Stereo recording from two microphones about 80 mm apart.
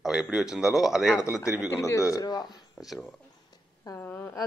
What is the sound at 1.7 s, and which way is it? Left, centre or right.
Speech, left.